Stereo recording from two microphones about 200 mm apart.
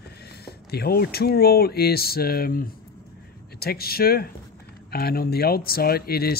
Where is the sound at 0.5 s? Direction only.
50° left (ahead or behind).